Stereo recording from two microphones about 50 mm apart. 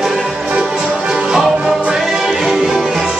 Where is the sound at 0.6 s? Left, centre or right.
Centre.